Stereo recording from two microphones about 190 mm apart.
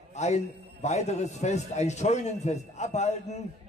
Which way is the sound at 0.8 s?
35° left (ahead or behind).